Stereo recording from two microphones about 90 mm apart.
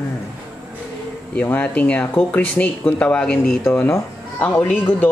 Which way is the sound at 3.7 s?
25° left (ahead or behind).